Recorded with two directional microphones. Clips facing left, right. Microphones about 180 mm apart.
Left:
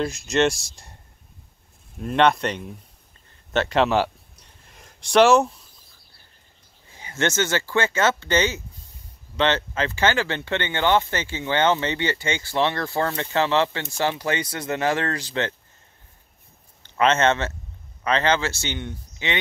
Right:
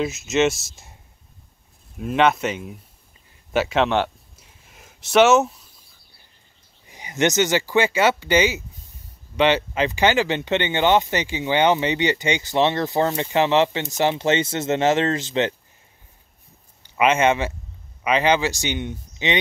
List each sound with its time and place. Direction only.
0.0 s speech: 5° right (ahead or behind)
2.0 s speech: 5° right (ahead or behind)
3.5 s a sound: 5° right (ahead or behind)
6.9 s speech: 15° right (ahead or behind)
16.8 s speech: 10° right (ahead or behind)